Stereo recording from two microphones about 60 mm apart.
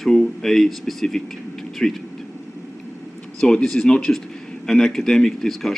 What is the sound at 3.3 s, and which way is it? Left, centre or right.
A man's voice, centre.